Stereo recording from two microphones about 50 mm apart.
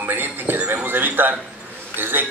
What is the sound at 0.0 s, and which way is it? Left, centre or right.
Music, right.